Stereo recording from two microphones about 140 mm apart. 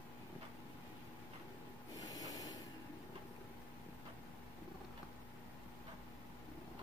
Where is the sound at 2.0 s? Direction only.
25° left (ahead or behind).